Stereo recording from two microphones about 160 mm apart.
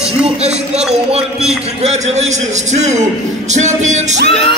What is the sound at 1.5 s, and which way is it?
A man's voice, 45° right (ahead or behind).